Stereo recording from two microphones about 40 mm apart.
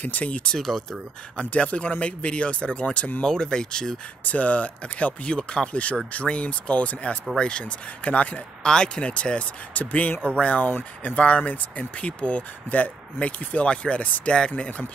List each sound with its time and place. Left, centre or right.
0.0 s speech: left
0.5 s speech: centre
1.3 s speech: left
3.2 s speech: centre
4.2 s speech: left
8.6 s speech: left